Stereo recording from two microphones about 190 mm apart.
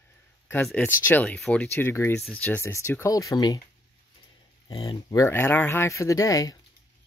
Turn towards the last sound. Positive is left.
turn(degrees=20)  # may be behind; listen again after turning